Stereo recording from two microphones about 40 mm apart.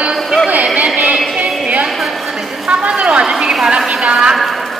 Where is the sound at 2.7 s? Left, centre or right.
Right.